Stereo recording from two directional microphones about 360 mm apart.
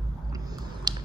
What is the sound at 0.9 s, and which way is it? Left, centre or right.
Finger snapping, centre.